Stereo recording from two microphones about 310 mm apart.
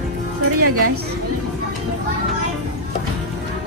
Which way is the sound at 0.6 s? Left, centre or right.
Right.